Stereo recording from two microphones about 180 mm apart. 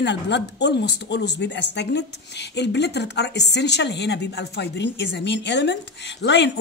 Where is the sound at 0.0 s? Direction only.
75° left (ahead or behind).